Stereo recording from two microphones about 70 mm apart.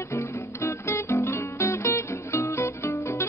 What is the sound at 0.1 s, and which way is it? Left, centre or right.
Music, left.